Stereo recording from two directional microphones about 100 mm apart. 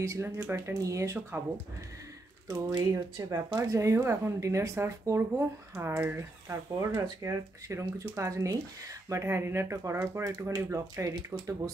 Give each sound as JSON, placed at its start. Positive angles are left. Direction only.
{"t": 0.0, "sound": "speech", "side_deg": -30}
{"t": 2.9, "sound": "speech", "side_deg": -30}